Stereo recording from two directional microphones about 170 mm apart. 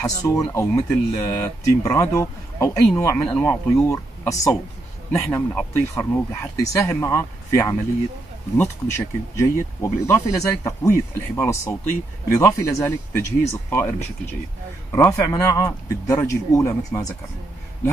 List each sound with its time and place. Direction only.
0.2 s a man's voice: 15° left (ahead or behind)
15.2 s speech: 20° left (ahead or behind)